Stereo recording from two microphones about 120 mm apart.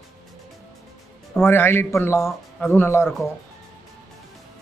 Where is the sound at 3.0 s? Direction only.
5° right (ahead or behind).